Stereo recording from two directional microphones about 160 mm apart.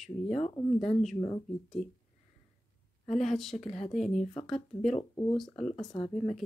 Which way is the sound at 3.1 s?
Centre (ahead or behind).